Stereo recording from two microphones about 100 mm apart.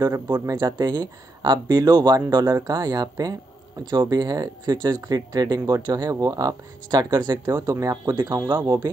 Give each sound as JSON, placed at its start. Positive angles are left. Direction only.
{"t": 0.0, "sound": "speech", "side_deg": -35}